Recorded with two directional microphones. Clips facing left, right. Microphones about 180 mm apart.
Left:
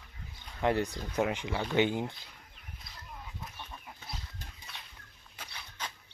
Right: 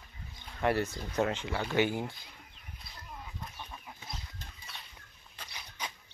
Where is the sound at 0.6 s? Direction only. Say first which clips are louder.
Left 1 dB; 15° left (ahead or behind).